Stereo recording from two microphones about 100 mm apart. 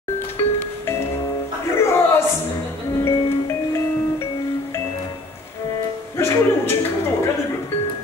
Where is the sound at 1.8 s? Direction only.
25° left (ahead or behind).